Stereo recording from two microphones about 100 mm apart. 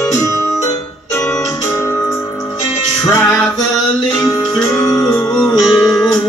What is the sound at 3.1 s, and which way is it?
Music, 30° left (ahead or behind).